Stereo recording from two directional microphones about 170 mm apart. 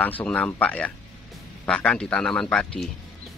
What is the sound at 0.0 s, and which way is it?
A man's voice, 10° left (ahead or behind).